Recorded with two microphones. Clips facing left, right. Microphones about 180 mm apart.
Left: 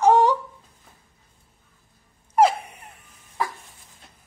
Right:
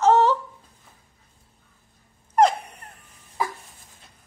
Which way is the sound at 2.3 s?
5° left (ahead or behind).